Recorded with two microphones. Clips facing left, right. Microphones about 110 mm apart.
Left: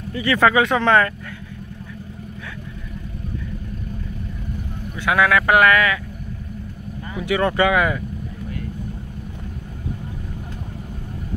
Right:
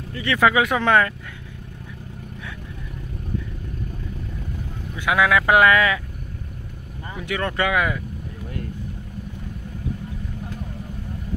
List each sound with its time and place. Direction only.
0.2 s speech: centre (ahead or behind)
4.9 s speech: 15° right (ahead or behind)
7.2 s speech: 10° left (ahead or behind)